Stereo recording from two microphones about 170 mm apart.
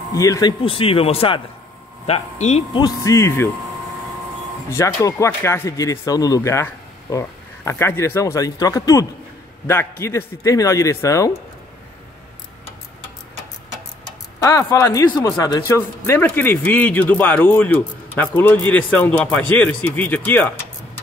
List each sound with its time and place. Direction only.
0.1 s speech: 20° left (ahead or behind); by 2.8 s 40° left (ahead or behind)
2.8 s speech: 20° left (ahead or behind)
4.6 s speech: 15° left (ahead or behind)
14.4 s speech: 20° left (ahead or behind)